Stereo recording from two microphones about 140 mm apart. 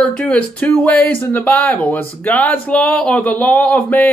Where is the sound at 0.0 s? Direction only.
5° left (ahead or behind).